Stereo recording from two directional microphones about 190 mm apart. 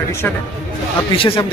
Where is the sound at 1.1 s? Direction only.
30° left (ahead or behind).